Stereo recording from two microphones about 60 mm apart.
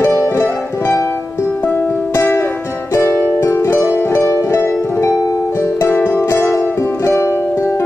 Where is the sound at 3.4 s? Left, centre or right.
Left.